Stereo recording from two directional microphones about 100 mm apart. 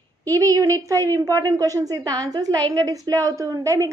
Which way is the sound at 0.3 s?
35° right (ahead or behind).